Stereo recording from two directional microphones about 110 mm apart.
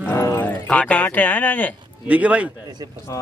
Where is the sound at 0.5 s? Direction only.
10° left (ahead or behind).